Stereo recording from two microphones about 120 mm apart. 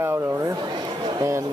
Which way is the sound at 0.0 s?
20° right (ahead or behind).